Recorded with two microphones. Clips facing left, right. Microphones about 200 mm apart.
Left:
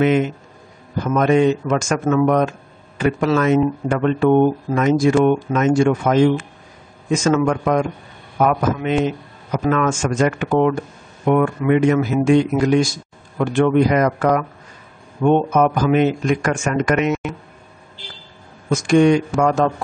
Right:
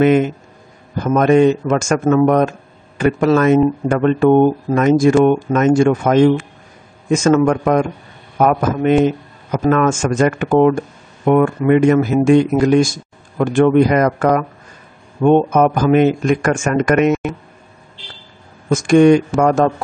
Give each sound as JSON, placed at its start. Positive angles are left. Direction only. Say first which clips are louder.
{"t": 1.0, "sound": "speech", "louder": "right 4 dB", "side_deg": -50}
{"t": 18.7, "sound": "speech", "louder": "right 4 dB", "side_deg": -50}